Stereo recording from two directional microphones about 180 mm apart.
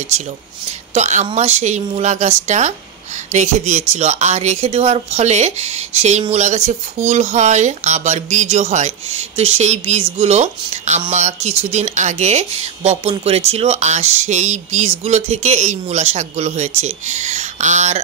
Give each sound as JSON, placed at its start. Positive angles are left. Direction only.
{"t": 0.1, "sound": "speech", "side_deg": -40}